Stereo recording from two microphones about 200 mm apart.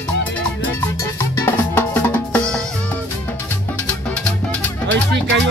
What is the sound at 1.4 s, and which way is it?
Drum, 10° left (ahead or behind).